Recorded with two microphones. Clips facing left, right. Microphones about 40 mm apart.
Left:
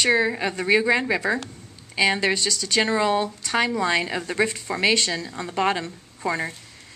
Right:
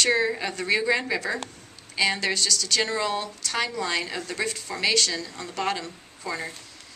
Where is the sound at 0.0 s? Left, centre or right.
Centre.